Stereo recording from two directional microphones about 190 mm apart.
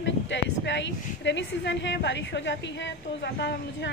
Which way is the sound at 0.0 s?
70° left (ahead or behind).